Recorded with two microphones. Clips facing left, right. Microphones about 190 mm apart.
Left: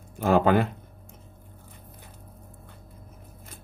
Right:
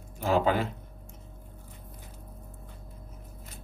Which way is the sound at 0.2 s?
55° left (ahead or behind).